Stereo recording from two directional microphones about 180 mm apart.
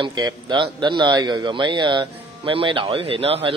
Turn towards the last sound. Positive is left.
turn(degrees=-30)  # may be behind; listen again after turning